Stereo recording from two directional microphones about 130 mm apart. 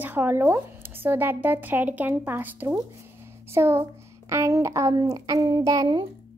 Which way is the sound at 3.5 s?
20° right (ahead or behind).